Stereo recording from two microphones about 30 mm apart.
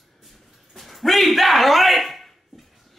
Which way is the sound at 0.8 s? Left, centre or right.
Centre.